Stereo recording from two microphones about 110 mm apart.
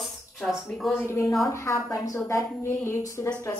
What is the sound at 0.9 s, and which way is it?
A woman's voice, 25° left (ahead or behind).